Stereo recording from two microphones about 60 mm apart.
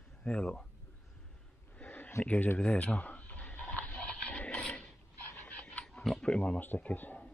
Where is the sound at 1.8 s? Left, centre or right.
Left.